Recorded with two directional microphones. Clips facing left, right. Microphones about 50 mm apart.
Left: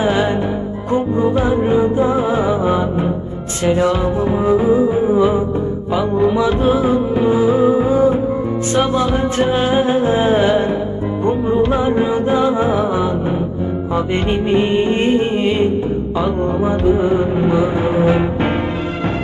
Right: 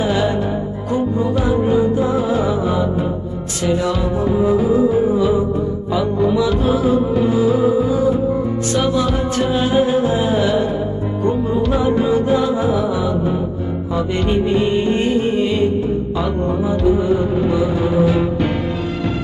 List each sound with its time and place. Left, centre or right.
0.0 s music: left
5.1 s music: left